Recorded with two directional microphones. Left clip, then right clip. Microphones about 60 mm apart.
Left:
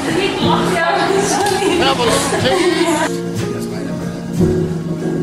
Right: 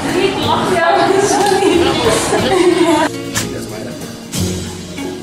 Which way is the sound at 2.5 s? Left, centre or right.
Centre.